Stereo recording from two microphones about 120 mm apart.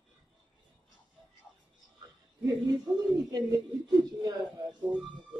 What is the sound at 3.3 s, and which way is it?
Speech, 30° right (ahead or behind).